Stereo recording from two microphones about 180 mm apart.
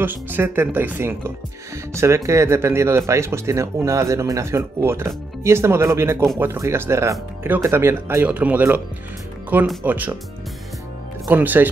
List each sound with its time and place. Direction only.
0.0 s speech: 10° right (ahead or behind)
11.2 s speech: 10° right (ahead or behind)